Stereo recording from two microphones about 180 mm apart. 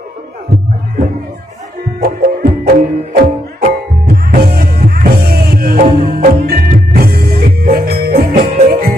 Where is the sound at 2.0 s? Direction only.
60° right (ahead or behind).